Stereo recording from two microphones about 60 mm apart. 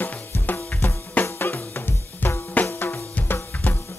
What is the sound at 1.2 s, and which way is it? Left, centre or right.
Drum kit, left.